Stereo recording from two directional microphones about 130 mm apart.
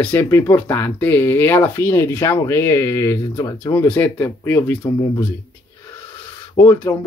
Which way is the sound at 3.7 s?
15° left (ahead or behind).